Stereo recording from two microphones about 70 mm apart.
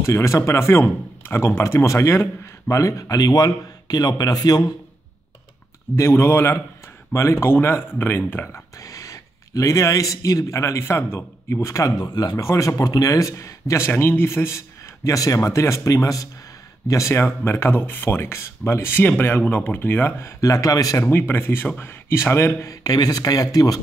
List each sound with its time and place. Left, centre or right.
0.0 s speech: left
5.9 s speech: left
8.8 s a man's voice: left
12.4 s speech: left
15.0 s speech: left
17.5 s speech: left
19.0 s speech: left
20.3 s speech: left
21.1 s speech: left
22.7 s speech: left